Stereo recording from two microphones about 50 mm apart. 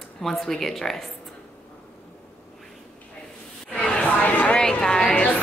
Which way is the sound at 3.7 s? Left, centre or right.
Left.